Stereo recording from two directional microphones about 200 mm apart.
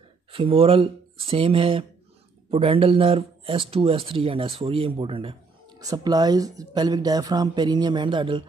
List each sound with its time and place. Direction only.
0.3 s speech: 30° right (ahead or behind)